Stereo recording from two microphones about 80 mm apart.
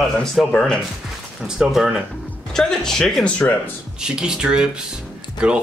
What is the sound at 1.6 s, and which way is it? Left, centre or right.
Speech, centre.